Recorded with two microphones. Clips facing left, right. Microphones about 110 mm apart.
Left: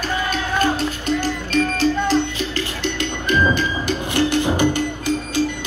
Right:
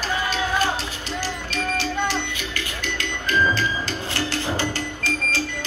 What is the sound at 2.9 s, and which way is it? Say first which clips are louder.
Music: left 2 dB; 20° left (ahead or behind).